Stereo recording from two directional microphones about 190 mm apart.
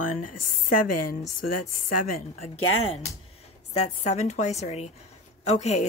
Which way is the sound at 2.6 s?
90° left.